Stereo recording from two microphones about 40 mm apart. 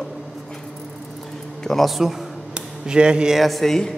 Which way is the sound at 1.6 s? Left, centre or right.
Centre.